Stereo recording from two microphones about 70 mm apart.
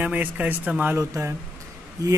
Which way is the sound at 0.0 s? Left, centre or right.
Right.